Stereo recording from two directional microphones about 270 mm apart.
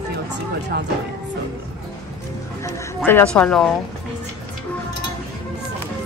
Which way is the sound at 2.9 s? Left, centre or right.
Centre.